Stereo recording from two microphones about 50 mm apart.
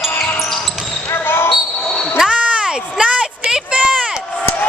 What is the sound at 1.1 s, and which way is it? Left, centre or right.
Basketball bounce, left.